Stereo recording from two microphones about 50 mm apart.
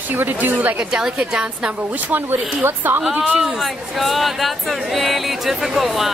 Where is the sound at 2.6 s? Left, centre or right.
Right.